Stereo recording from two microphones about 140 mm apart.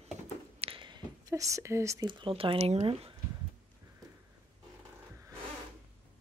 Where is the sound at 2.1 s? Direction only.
40° right (ahead or behind).